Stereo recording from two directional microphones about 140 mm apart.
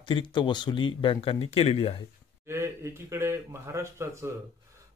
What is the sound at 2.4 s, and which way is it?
Speech, 20° right (ahead or behind).